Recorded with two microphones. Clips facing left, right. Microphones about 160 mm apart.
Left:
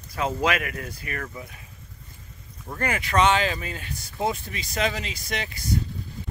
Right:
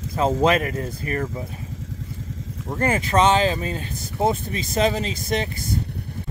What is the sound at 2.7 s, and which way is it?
Speech, 25° right (ahead or behind).